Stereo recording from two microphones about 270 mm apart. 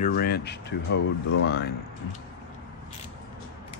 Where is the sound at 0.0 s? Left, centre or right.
Left.